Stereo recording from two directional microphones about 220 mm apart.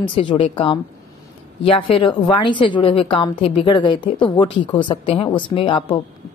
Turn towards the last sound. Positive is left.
turn(degrees=20)  # may be behind; listen again after turning